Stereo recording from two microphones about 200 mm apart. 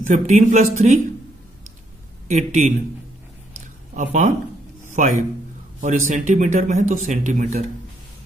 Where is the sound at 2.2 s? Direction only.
35° right (ahead or behind).